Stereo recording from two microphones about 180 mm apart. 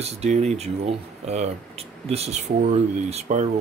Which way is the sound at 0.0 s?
35° right (ahead or behind).